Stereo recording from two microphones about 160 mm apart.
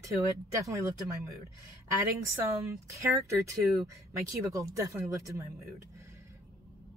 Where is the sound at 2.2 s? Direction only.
20° right (ahead or behind).